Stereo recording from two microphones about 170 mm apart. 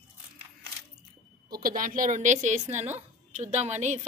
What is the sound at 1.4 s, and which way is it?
A woman's voice, 60° right (ahead or behind).